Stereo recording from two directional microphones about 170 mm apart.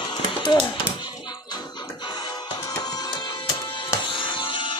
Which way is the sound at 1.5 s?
25° left (ahead or behind).